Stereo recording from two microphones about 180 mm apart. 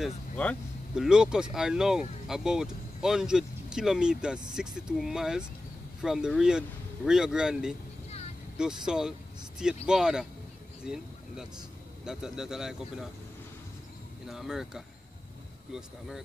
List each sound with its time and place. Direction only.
0.0 s speech: 5° left (ahead or behind)
0.9 s speech: 5° right (ahead or behind)
10.8 s a sound: 5° right (ahead or behind)
12.0 s speech: 5° right (ahead or behind)
14.2 s speech: centre (ahead or behind)